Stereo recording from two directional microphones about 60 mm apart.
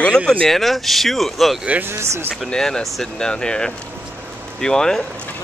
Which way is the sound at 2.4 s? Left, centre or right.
Centre.